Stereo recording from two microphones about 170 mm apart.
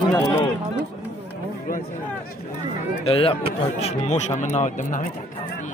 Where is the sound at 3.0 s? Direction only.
30° left (ahead or behind); by 5.0 s 50° left (ahead or behind).